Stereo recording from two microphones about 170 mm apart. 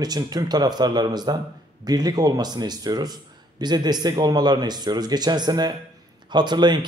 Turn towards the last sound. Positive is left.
turn(degrees=-25)  # may be behind; listen again after turning